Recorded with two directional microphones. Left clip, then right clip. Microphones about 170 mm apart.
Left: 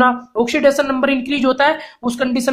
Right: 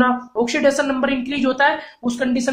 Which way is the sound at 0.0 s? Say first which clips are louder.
Left 3 dB; 45° left (ahead or behind).